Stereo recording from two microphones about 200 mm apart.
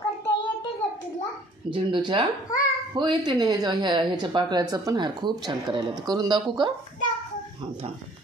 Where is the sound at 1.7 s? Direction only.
25° right (ahead or behind).